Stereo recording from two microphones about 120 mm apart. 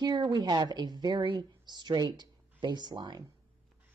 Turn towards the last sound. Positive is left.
turn(degrees=-35)  # may be behind; listen again after turning